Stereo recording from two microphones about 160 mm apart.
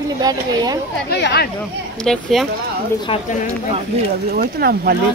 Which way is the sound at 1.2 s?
85° left.